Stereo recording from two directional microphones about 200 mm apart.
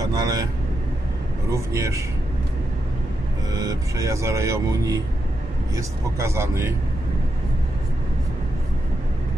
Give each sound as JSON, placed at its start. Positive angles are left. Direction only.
{"t": 0.0, "sound": "vehicle", "side_deg": -20}
{"t": 1.5, "sound": "speech", "side_deg": -15}
{"t": 3.5, "sound": "speech", "side_deg": -15}